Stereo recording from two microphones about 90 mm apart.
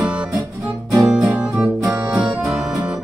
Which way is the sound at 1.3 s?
15° right (ahead or behind).